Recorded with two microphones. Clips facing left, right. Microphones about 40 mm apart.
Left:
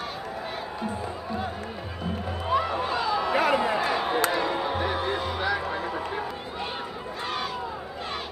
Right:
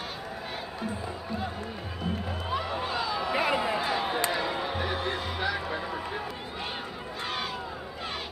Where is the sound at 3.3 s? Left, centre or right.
Left.